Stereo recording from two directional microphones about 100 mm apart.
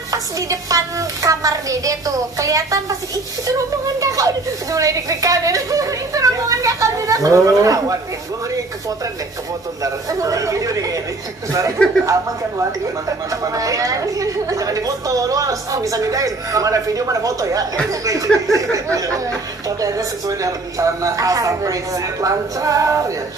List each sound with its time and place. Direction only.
0.1 s a woman's voice: 35° right (ahead or behind)
10.0 s a woman's voice: 35° right (ahead or behind)
11.8 s speech: 10° left (ahead or behind)
13.3 s a woman's voice: 35° right (ahead or behind)